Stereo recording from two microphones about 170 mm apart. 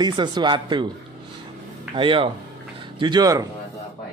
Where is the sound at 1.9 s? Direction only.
30° right (ahead or behind).